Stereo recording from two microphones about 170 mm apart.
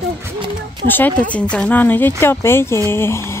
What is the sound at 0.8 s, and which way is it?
Speech, 10° left (ahead or behind).